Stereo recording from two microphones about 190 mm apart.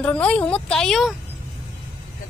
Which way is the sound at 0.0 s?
5° left (ahead or behind).